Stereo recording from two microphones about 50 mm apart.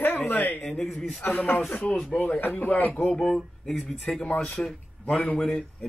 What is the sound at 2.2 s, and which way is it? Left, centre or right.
Speech, left.